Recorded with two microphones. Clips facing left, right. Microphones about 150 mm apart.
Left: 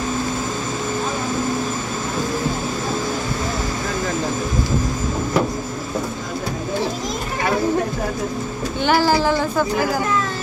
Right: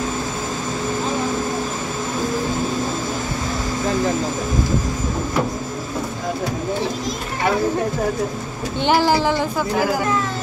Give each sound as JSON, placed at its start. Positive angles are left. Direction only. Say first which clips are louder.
{"t": 8.8, "sound": "speech", "louder": "even", "side_deg": -20}